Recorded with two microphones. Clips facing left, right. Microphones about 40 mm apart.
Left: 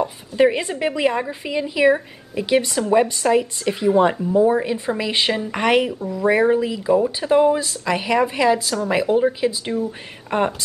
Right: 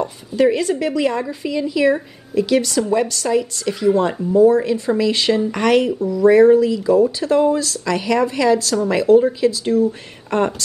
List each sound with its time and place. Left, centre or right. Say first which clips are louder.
0.4 s speech: right 1 dB; left